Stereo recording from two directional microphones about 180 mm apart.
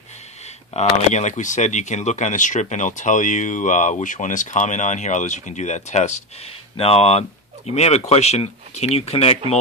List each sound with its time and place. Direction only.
0.7 s speech: 40° left (ahead or behind)